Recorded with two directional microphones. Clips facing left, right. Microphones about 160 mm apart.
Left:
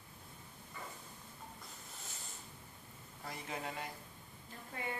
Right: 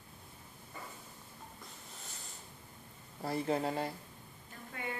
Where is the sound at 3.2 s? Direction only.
35° right (ahead or behind).